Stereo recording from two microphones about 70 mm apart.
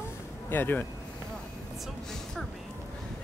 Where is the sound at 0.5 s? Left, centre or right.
Left.